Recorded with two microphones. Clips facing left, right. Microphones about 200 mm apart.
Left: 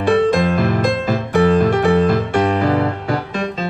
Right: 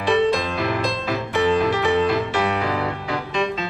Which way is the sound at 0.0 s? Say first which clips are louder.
Left 5 dB; 50° left (ahead or behind).